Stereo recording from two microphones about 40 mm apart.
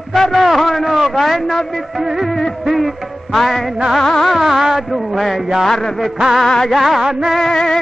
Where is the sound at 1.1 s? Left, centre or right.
Centre.